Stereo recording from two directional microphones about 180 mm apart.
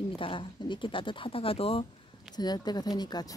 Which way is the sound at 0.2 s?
30° left (ahead or behind).